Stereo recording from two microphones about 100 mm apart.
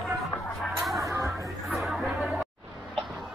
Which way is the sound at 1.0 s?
30° right (ahead or behind).